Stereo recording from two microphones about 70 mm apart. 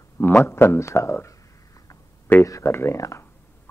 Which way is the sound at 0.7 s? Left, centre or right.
Left.